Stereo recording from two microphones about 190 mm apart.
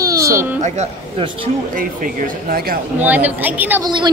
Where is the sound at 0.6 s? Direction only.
35° right (ahead or behind).